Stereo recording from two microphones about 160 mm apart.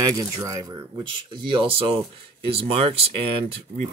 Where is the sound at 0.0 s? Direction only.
20° right (ahead or behind).